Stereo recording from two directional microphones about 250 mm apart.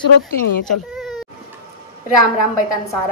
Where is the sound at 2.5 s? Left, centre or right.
Left.